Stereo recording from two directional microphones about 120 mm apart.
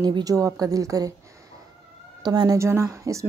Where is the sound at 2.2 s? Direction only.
35° right (ahead or behind).